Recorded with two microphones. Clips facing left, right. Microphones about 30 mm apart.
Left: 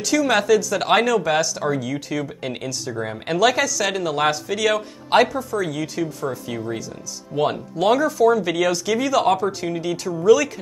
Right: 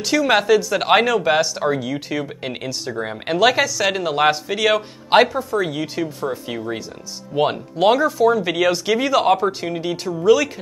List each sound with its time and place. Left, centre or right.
0.0 s speech: right